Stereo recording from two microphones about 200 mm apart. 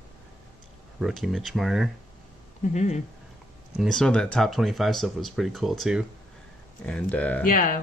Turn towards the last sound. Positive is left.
turn(degrees=45)  # may be behind; listen again after turning